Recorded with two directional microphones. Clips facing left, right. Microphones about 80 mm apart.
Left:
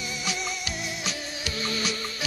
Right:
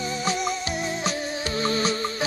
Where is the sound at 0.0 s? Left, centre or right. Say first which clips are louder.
Right 7 dB; right.